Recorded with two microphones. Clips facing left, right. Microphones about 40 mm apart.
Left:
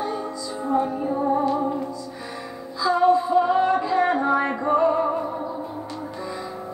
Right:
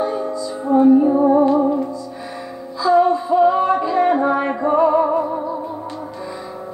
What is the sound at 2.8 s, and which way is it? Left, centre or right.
Music, centre.